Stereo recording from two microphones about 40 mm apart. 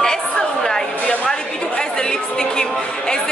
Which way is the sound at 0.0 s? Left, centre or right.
Centre.